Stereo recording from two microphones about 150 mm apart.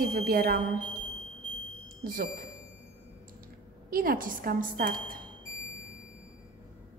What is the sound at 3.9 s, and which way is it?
Speech, 75° right (ahead or behind).